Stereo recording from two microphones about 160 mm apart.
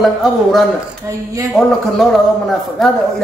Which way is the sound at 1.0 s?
20° right (ahead or behind).